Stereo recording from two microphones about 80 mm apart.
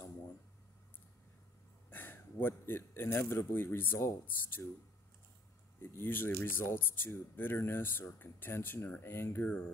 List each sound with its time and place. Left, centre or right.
1.9 s speech: left
5.8 s speech: left